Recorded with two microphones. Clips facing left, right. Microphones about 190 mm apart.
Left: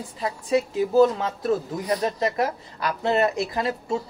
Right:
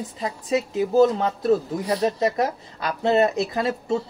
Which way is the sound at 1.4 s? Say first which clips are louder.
Right 2 dB; 30° right (ahead or behind).